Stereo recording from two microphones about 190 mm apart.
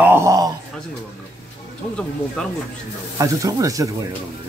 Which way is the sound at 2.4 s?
5° left (ahead or behind).